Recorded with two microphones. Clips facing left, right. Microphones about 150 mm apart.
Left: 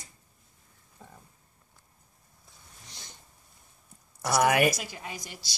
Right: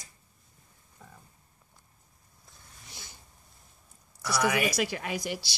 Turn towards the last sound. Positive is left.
turn(degrees=-75)  # may be behind; listen again after turning